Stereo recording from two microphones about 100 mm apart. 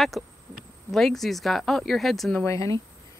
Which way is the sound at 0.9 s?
Centre (ahead or behind).